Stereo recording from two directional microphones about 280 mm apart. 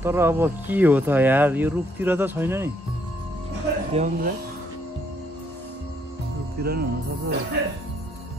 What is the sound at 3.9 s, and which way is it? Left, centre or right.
Speech, right.